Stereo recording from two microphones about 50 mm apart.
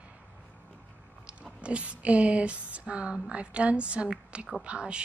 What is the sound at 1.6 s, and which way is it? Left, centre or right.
Speech, right.